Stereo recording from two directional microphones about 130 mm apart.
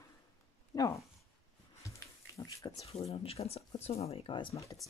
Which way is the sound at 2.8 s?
55° left (ahead or behind).